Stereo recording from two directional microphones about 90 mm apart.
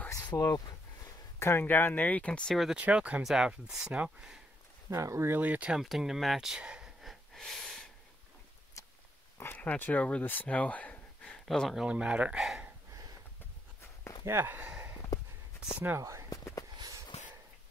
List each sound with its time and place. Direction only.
0.2 s a sound: 50° left (ahead or behind)
1.4 s speech: 25° left (ahead or behind)
2.5 s speech: centre (ahead or behind)
2.8 s speech: 15° right (ahead or behind)
4.8 s speech: 30° right (ahead or behind)
5.4 s speech: 20° right (ahead or behind)
5.7 s gasp: 5° right (ahead or behind)
8.8 s a sound: 35° left (ahead or behind)
9.4 s speech: 20° left (ahead or behind)
11.3 s speech: 5° left (ahead or behind)
11.8 s speech: 10° right (ahead or behind)
14.2 s speech: 25° right (ahead or behind)
16.0 s speech: 35° right (ahead or behind)